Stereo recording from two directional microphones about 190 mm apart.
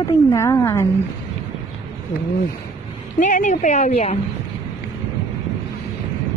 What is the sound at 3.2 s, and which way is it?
Speech, 40° left (ahead or behind).